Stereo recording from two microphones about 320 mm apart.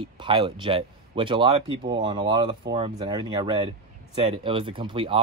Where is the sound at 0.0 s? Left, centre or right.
Centre.